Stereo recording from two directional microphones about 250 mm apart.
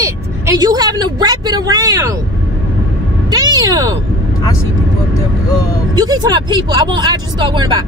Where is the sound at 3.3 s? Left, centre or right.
Centre.